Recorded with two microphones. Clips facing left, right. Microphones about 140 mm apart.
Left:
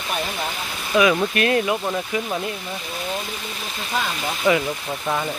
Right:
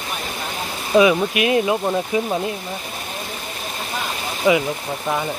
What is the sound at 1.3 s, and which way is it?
Speech, 10° right (ahead or behind).